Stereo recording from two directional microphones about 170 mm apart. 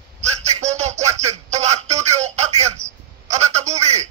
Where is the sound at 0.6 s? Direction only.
45° right (ahead or behind).